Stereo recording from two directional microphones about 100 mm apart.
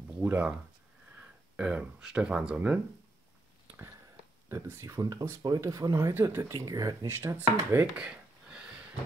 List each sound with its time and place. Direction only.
0.2 s speech: 15° right (ahead or behind)
1.6 s speech: 10° right (ahead or behind)
4.5 s speech: 30° right (ahead or behind)
7.1 s speech: 20° right (ahead or behind)
7.8 s a sound: 10° right (ahead or behind)